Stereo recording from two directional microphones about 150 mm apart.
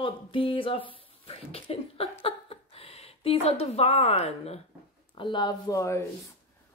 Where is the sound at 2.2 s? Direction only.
40° left (ahead or behind).